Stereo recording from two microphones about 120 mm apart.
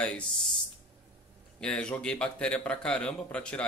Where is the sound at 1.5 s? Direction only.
10° left (ahead or behind).